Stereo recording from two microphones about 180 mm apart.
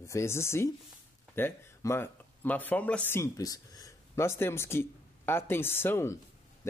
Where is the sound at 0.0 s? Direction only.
15° left (ahead or behind).